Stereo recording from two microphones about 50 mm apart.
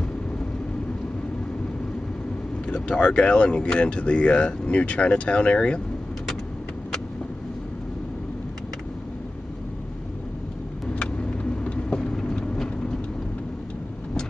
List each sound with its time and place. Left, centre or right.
2.6 s speech: centre
11.0 s vehicle: left